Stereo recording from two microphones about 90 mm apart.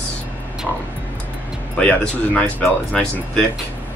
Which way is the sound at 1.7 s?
10° left (ahead or behind).